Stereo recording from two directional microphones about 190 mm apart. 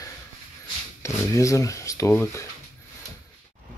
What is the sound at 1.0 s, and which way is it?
Speech, 15° left (ahead or behind).